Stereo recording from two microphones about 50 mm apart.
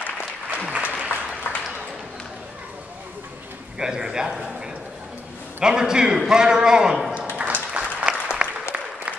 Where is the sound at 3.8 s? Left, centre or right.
Centre.